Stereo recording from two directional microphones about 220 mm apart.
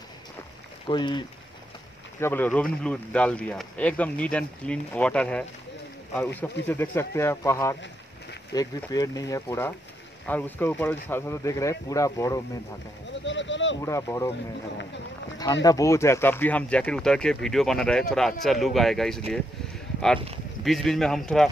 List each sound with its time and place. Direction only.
0.8 s speech: 20° left (ahead or behind)
2.1 s speech: 10° left (ahead or behind)
13.2 s a sound: 55° left (ahead or behind)
13.7 s speech: 15° left (ahead or behind)
15.6 s speech: 15° left (ahead or behind)
20.6 s speech: centre (ahead or behind)